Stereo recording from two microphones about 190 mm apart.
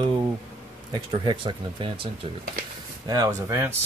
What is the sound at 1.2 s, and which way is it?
Speech, 25° right (ahead or behind).